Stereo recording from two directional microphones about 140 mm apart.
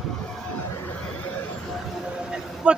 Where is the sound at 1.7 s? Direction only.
5° right (ahead or behind).